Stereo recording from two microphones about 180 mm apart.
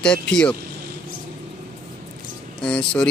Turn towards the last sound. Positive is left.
turn(degrees=5)  # may be behind; listen again after turning